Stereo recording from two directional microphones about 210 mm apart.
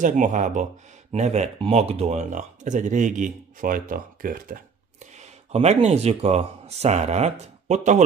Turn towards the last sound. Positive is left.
turn(degrees=-35)  # may be behind; listen again after turning